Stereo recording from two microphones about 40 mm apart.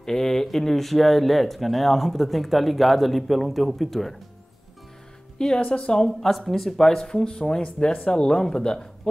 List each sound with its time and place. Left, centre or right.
0.0 s speech: centre
5.7 s speech: left
6.0 s speech: centre